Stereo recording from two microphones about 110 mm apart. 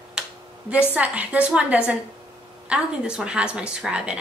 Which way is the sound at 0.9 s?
15° right (ahead or behind).